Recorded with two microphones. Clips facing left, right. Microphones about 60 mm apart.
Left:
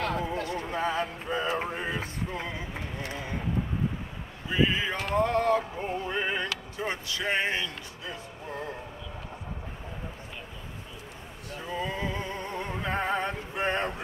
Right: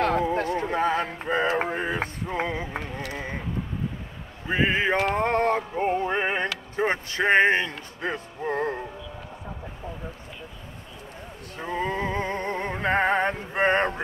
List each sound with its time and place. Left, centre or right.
0.0 s speech: right
4.5 s music: right
11.5 s music: right